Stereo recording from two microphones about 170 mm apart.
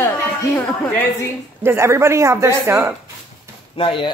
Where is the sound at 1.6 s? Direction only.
15° right (ahead or behind).